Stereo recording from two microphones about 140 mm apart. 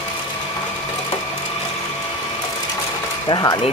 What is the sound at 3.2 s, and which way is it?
Speech, 30° left (ahead or behind).